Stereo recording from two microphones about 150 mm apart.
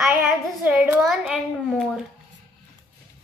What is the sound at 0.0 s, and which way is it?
Child singing, 10° right (ahead or behind).